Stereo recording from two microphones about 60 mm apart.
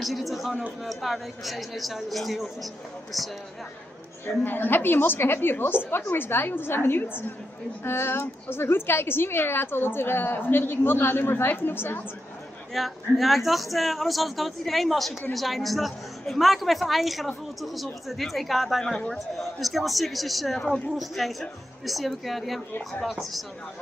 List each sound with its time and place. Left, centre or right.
0.0 s speech: centre
4.3 s a woman's voice: left
12.7 s speech: centre